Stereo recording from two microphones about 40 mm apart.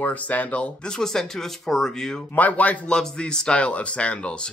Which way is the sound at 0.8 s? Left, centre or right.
Centre.